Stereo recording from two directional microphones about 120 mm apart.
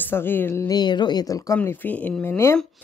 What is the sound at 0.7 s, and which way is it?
Speech, 35° left (ahead or behind).